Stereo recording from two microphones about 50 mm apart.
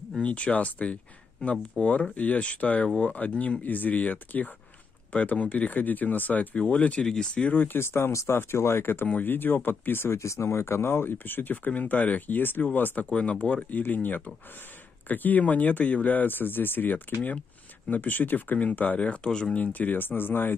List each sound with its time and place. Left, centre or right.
0.2 s speech: left
6.5 s speech: left
7.5 s speech: left
8.3 s speech: left
10.2 s speech: left
13.1 s speech: left
19.2 s speech: centre
19.5 s speech: left